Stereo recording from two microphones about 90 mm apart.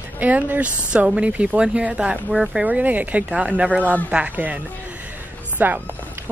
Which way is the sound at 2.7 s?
15° right (ahead or behind).